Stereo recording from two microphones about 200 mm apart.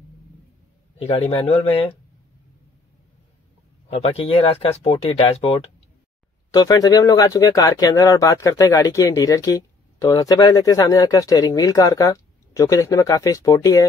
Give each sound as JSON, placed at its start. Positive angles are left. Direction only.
{"t": 0.9, "sound": "speech", "side_deg": 30}
{"t": 3.9, "sound": "speech", "side_deg": 30}
{"t": 6.5, "sound": "speech", "side_deg": 20}